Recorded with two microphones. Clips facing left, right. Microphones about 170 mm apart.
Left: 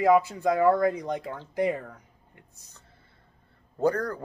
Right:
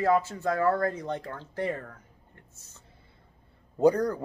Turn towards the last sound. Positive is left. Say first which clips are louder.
# right 3 dB
turn(degrees=-15)  # may be behind; listen again after turning